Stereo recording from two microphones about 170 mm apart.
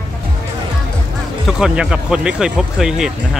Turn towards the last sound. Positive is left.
turn(degrees=-5)  # may be behind; listen again after turning